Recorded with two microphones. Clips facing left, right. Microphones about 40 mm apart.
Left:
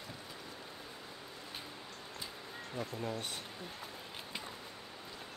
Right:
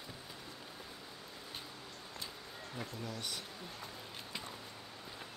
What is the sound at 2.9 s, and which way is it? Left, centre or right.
Speech, left.